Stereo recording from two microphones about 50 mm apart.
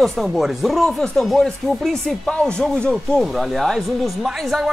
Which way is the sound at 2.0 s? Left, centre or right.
Centre.